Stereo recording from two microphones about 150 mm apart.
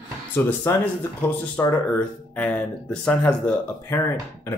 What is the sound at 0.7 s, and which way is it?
Speech, 15° left (ahead or behind).